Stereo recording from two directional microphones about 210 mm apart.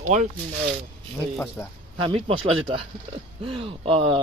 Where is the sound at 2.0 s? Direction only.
25° right (ahead or behind).